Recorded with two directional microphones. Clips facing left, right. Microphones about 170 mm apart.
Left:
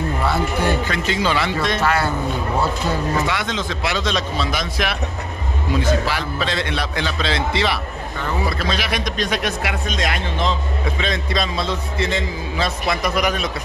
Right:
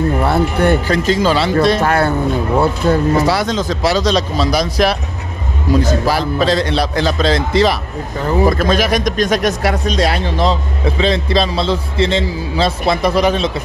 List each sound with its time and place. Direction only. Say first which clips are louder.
0.2 s speech: right 3 dB; 60° right (ahead or behind)
0.8 s a man's voice: right 7 dB; 40° right (ahead or behind)
1.8 s speech: right 5 dB; 55° right (ahead or behind)
3.2 s a man's voice: right 7 dB; 35° right (ahead or behind)